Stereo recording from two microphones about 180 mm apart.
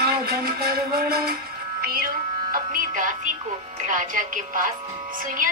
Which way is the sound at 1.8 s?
55° right (ahead or behind).